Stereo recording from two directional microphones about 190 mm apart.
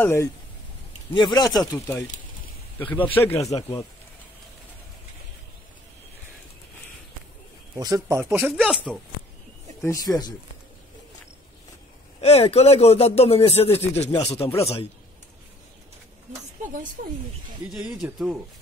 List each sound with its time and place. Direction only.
0.0 s speech: 15° left (ahead or behind)
3.1 s speech: 10° left (ahead or behind)
7.7 s speech: 15° right (ahead or behind)
8.5 s speech: centre (ahead or behind)
9.8 s speech: 15° left (ahead or behind)
12.2 s speech: 35° left (ahead or behind)
16.6 s speech: 40° right (ahead or behind)
17.6 s speech: 5° right (ahead or behind)